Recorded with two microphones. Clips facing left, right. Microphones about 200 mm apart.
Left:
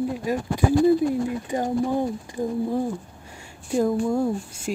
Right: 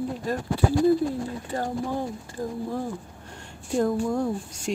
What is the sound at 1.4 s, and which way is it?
Speech, 15° left (ahead or behind).